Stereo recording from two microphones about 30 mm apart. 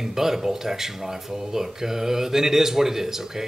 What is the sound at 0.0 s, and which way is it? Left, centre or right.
Speech, centre.